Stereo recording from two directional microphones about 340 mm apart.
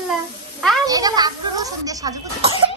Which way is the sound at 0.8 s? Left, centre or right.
Centre.